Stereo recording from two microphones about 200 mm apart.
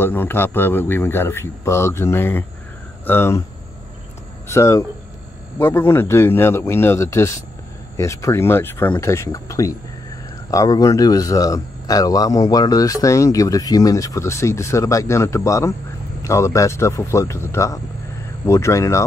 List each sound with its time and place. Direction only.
0.0 s speech: 10° left (ahead or behind)
4.5 s speech: 15° left (ahead or behind)